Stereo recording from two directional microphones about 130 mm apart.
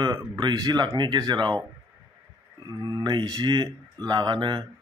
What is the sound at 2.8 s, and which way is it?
Speech, 30° right (ahead or behind).